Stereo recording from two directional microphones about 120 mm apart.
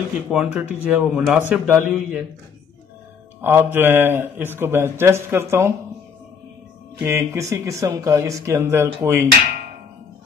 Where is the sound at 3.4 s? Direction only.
15° right (ahead or behind).